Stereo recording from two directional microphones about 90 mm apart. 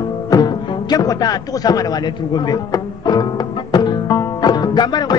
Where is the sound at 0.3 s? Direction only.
50° left (ahead or behind).